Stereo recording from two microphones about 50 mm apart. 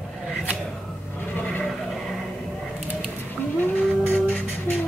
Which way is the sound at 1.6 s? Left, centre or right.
Centre.